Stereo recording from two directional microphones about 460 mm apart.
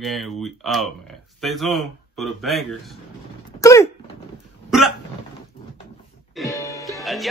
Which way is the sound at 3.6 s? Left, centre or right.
Centre.